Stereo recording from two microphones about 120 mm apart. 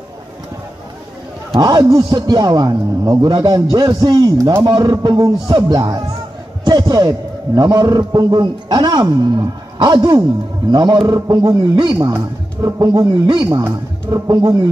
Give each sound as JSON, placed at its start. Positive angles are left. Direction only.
{"t": 1.6, "sound": "a man's voice", "side_deg": -35}
{"t": 4.6, "sound": "a man's voice", "side_deg": -40}
{"t": 14.2, "sound": "speech", "side_deg": -30}